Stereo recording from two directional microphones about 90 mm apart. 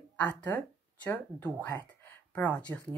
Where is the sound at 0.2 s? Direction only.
15° left (ahead or behind).